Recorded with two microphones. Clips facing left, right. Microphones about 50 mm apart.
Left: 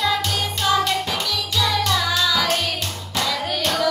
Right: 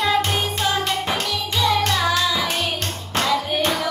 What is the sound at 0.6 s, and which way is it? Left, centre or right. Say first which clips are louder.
Music: left 5 dB; right.